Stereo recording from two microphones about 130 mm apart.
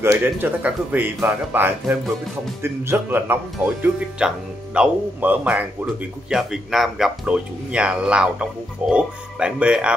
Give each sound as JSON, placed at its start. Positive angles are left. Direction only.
{"t": 0.0, "sound": "speech", "side_deg": -15}